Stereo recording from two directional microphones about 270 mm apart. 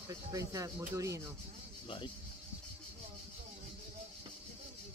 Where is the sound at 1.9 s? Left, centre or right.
Centre.